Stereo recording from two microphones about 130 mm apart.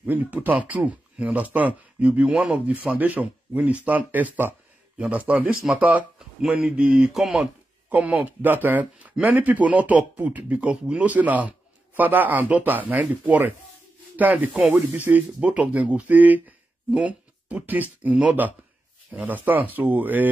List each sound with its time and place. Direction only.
0.0 s speech: 10° right (ahead or behind)